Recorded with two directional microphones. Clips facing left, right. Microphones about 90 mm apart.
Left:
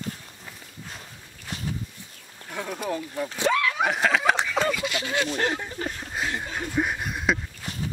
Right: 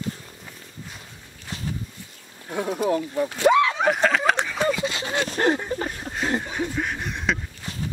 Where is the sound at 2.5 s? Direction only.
25° right (ahead or behind).